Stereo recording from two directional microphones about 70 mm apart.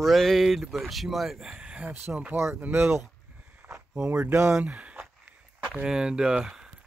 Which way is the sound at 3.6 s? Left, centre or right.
Centre.